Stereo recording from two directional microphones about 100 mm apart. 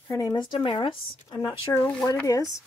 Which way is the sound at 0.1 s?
35° left (ahead or behind).